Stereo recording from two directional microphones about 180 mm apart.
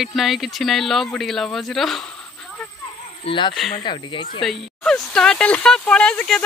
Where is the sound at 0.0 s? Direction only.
Centre (ahead or behind).